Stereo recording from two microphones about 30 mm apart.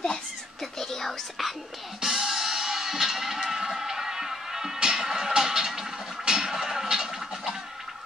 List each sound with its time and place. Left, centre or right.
0.7 s music: centre
2.0 s music: centre
5.7 s a sound: centre